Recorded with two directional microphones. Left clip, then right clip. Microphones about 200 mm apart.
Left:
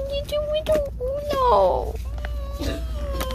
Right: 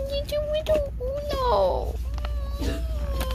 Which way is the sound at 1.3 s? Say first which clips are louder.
Left 5 dB; 15° left (ahead or behind).